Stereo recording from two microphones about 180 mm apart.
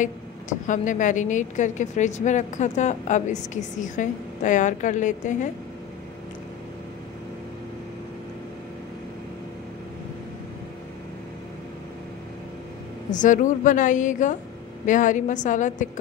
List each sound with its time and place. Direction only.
0.0 s a woman's voice: 45° left (ahead or behind)
13.1 s a woman's voice: 45° left (ahead or behind)